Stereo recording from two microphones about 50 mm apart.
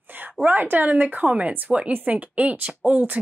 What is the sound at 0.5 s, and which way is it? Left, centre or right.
A woman's voice, right.